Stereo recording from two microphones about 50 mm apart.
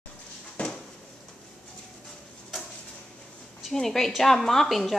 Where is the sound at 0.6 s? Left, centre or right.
Left.